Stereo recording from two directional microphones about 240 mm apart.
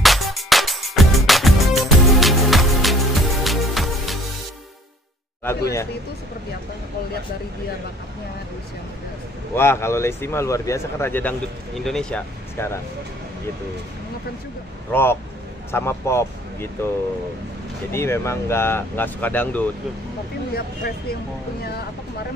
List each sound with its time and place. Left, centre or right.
0.0 s music: centre
9.6 s speech: centre
14.9 s speech: centre
17.9 s speech: centre
20.5 s speech: left